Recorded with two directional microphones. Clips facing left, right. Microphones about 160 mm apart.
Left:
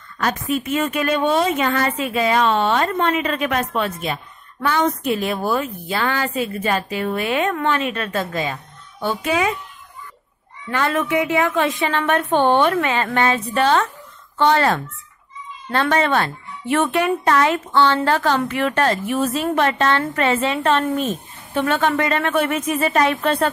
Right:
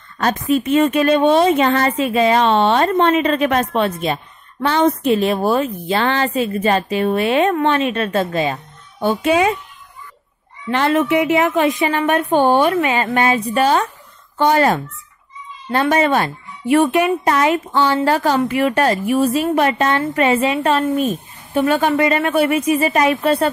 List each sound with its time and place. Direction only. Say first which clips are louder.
0.2 s a woman's voice: right 5 dB; 30° right (ahead or behind)
10.7 s speech: right 5 dB; 25° right (ahead or behind); by 23.5 s 10° right (ahead or behind)